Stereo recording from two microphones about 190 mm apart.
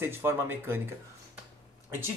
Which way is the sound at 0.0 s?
10° right (ahead or behind).